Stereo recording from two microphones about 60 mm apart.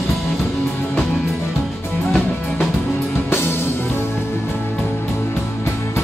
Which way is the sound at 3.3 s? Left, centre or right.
Left.